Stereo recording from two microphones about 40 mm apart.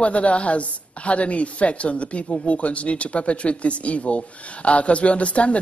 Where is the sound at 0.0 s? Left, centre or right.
Left.